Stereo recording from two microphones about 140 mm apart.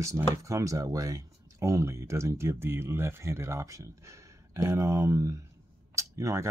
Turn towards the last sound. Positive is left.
turn(degrees=-20)  # may be behind; listen again after turning